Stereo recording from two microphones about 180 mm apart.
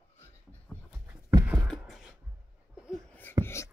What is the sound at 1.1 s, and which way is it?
Clip-clop, 10° right (ahead or behind).